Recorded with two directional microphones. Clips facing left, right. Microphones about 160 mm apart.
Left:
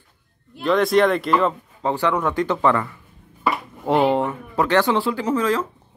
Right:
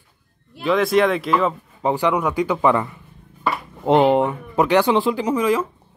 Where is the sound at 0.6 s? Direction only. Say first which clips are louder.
Even; centre (ahead or behind).